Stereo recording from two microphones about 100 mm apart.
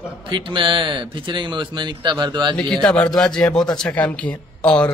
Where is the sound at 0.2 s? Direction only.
55° right (ahead or behind).